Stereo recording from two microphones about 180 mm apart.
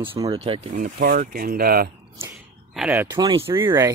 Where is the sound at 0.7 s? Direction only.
50° right (ahead or behind).